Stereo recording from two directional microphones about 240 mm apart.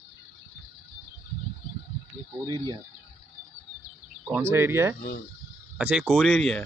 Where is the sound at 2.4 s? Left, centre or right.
Centre.